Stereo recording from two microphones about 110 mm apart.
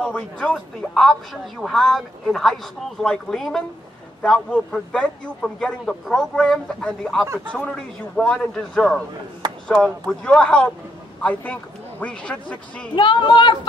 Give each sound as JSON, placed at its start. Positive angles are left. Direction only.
{"t": 0.0, "sound": "a man's voice", "side_deg": 10}
{"t": 10.2, "sound": "a man's voice", "side_deg": 10}
{"t": 12.0, "sound": "a man's voice", "side_deg": 10}
{"t": 12.9, "sound": "speech", "side_deg": 45}